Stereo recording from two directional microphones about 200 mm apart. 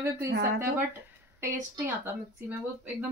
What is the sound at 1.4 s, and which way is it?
Speech, 10° right (ahead or behind).